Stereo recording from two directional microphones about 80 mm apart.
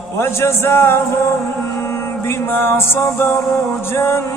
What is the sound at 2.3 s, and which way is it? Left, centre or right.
Music, left.